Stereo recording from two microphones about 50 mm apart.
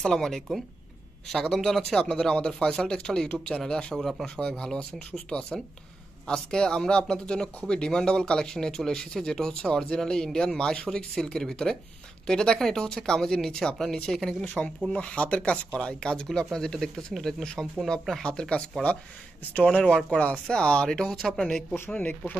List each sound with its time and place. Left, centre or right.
0.0 s speech: centre
14.9 s speech: left; by 21.4 s centre
21.9 s speech: left